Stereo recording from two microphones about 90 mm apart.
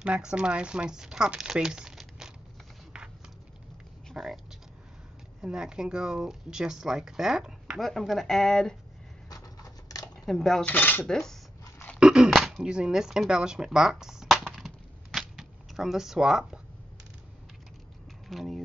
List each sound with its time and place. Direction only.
0.0 s speech: 10° right (ahead or behind)
4.1 s speech: centre (ahead or behind)
5.4 s speech: 5° right (ahead or behind)
9.3 s a sound: 45° left (ahead or behind)
10.2 s speech: 5° left (ahead or behind)
10.6 s speech: 20° left (ahead or behind)
11.1 s cutlery: 5° left (ahead or behind)
12.0 s a sound: 10° right (ahead or behind)
18.3 s speech: centre (ahead or behind)